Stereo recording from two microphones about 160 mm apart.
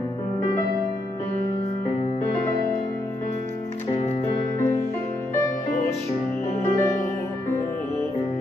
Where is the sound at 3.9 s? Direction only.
40° left (ahead or behind).